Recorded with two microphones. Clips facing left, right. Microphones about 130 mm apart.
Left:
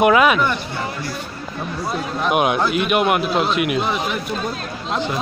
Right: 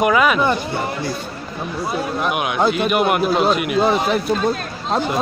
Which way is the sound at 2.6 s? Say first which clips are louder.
Right 3 dB; 30° right (ahead or behind).